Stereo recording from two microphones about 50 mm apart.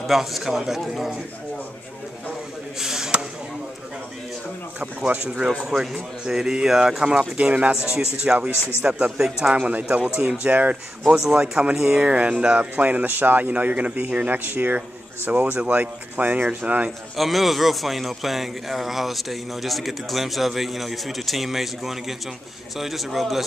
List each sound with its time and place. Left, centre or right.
0.0 s a man's voice: centre
2.8 s a sound: centre
4.7 s speech: right
7.3 s speech: right
8.8 s speech: centre
9.6 s speech: right
10.4 s speech: right
11.1 s speech: centre
12.1 s speech: right
15.5 s speech: right
17.2 s a man's voice: centre